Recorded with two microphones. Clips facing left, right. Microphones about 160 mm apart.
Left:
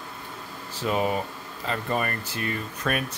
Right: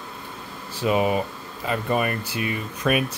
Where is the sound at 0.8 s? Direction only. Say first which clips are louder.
Right 4 dB; 10° right (ahead or behind).